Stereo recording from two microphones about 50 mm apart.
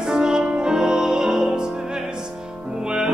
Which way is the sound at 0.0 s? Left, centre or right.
Centre.